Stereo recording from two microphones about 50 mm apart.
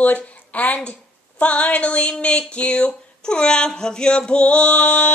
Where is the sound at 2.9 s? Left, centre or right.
Centre.